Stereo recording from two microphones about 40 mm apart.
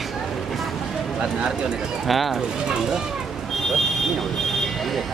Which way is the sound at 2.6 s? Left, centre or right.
Centre.